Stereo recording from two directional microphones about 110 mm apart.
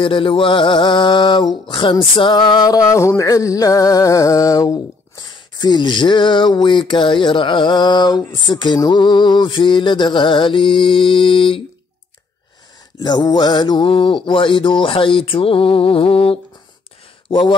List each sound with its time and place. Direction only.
0.0 s mantra: 50° left (ahead or behind)
1.7 s music: 50° left (ahead or behind)
8.3 s mantra: 40° left (ahead or behind)
13.0 s mantra: 40° left (ahead or behind); by 16.3 s 60° left (ahead or behind)
17.3 s speech: 45° left (ahead or behind)